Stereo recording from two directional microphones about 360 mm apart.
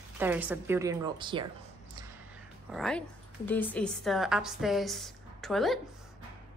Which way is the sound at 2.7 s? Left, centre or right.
Centre.